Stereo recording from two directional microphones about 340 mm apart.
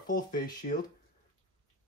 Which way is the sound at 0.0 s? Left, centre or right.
Left.